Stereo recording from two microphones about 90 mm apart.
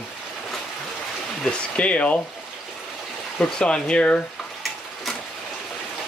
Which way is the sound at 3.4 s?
10° left (ahead or behind).